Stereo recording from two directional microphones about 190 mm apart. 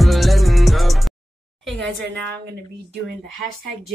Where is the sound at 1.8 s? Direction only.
65° right (ahead or behind).